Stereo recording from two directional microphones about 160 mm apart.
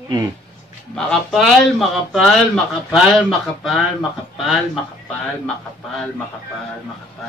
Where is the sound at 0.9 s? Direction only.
Centre (ahead or behind).